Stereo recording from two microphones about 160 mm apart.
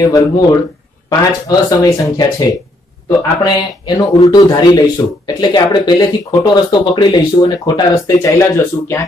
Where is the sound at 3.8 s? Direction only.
25° left (ahead or behind).